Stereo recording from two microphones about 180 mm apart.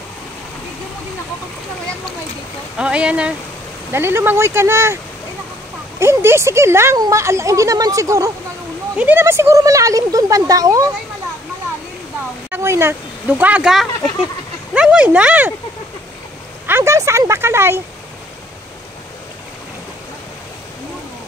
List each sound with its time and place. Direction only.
2.8 s speech: 5° right (ahead or behind)
5.9 s speech: 15° right (ahead or behind)
12.4 s speech: 15° right (ahead or behind)
16.6 s a sound: 15° right (ahead or behind)